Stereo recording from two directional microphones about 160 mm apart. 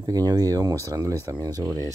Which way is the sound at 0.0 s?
25° right (ahead or behind).